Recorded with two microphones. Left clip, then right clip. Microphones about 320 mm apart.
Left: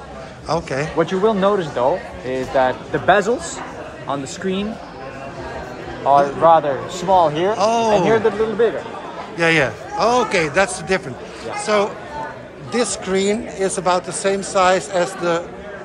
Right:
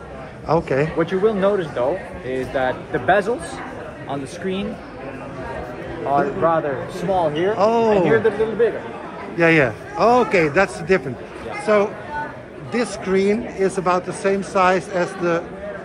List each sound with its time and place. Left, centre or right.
0.5 s speech: centre
0.9 s speech: left
6.1 s speech: left
7.5 s speech: centre
7.9 s speech: left
9.4 s speech: centre